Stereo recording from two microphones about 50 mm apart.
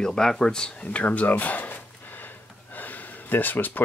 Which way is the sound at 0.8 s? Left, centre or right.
Left.